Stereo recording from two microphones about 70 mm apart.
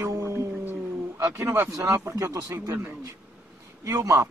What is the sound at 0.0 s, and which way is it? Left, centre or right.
Music, right.